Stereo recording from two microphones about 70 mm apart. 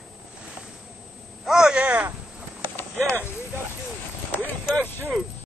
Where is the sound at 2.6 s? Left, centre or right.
Left.